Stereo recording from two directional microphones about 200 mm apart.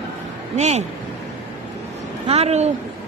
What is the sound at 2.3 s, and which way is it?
Speech, 30° right (ahead or behind).